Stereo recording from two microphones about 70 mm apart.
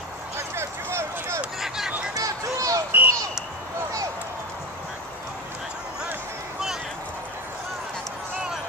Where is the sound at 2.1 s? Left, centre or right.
Right.